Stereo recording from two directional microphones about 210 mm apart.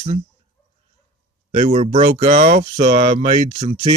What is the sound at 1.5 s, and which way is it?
Speech, 30° right (ahead or behind).